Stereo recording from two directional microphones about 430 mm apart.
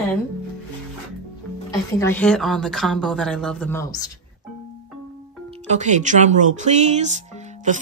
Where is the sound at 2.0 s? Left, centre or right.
Centre.